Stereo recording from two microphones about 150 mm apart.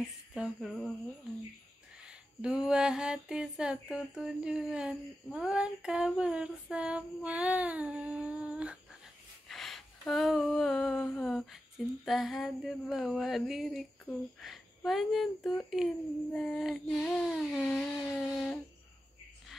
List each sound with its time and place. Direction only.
0.3 s speech: centre (ahead or behind)
2.4 s a sound: 5° right (ahead or behind)
9.5 s humming: centre (ahead or behind)
12.0 s speech: centre (ahead or behind)